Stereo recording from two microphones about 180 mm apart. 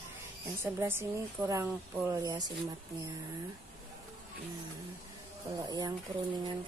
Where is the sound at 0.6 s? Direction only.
10° right (ahead or behind).